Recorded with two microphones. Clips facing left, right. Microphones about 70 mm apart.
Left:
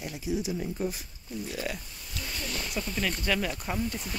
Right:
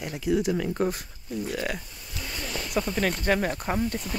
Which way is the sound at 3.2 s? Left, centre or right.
Right.